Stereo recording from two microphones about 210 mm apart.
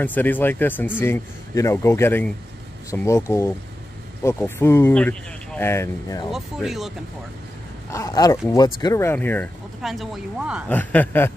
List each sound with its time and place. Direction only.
0.0 s speech: 10° left (ahead or behind)
6.3 s speech: centre (ahead or behind)
7.9 s speech: 15° left (ahead or behind); by 10.6 s 5° right (ahead or behind)
10.7 s speech: 10° left (ahead or behind)